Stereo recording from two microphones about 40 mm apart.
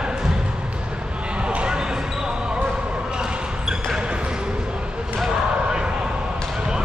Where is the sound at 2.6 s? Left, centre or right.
Centre.